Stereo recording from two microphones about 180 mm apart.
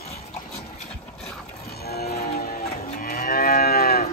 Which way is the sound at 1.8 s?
60° left (ahead or behind).